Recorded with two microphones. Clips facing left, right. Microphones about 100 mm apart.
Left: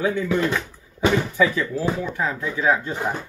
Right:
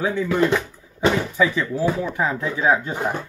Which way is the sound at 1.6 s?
20° right (ahead or behind).